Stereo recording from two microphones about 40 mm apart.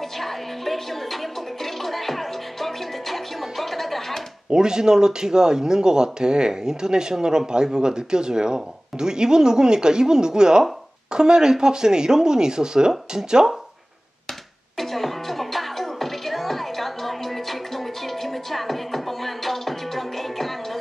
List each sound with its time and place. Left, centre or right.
0.2 s music: centre
4.5 s speech: centre
14.8 s music: centre